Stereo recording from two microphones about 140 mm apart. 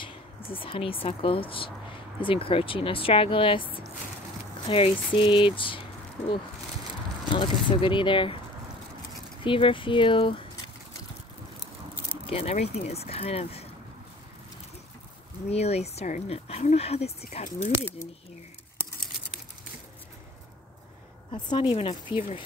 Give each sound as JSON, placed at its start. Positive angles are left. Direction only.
{"t": 0.0, "sound": "speech", "side_deg": 40}
{"t": 9.4, "sound": "speech", "side_deg": 35}
{"t": 12.3, "sound": "speech", "side_deg": 50}
{"t": 15.5, "sound": "speech", "side_deg": 50}
{"t": 17.5, "sound": "speech", "side_deg": 60}
{"t": 21.3, "sound": "speech", "side_deg": 40}